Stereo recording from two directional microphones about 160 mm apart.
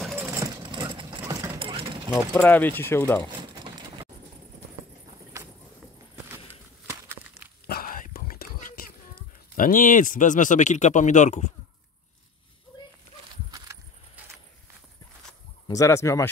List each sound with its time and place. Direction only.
0.1 s vehicle: 15° right (ahead or behind)
1.6 s sewing machine: 35° right (ahead or behind)
2.3 s speech: 10° left (ahead or behind)
3.3 s a sound: 30° right (ahead or behind)
5.4 s a sound: 20° right (ahead or behind)
7.6 s whispering: 65° left (ahead or behind)
9.6 s speech: 55° left (ahead or behind)
15.7 s speech: 20° left (ahead or behind)